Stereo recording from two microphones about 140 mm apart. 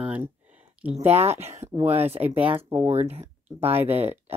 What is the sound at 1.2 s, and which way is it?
Speech, 50° right (ahead or behind).